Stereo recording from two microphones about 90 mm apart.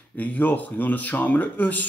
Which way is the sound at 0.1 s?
15° left (ahead or behind).